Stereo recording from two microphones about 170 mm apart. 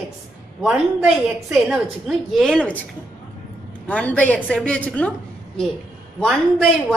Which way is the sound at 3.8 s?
10° left (ahead or behind).